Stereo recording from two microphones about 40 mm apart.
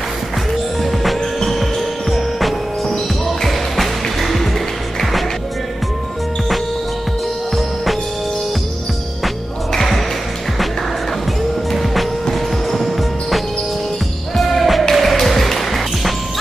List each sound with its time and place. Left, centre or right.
0.9 s music: centre
7.5 s music: centre
9.2 s music: centre
11.7 s music: centre